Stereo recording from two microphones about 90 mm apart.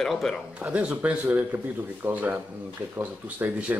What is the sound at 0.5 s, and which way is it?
Speech, 15° right (ahead or behind).